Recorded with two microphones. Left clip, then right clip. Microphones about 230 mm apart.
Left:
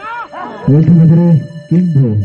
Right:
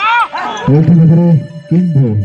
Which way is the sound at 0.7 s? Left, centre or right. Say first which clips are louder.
Left 2 dB; centre.